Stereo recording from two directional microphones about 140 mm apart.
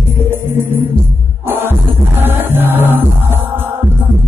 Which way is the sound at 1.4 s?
15° right (ahead or behind).